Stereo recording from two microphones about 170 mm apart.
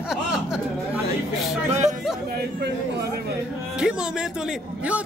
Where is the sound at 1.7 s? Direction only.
45° right (ahead or behind).